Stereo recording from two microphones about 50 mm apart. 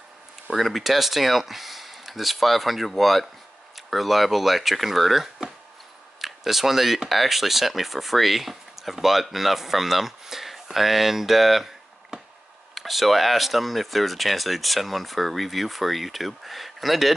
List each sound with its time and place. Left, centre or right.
0.5 s speech: centre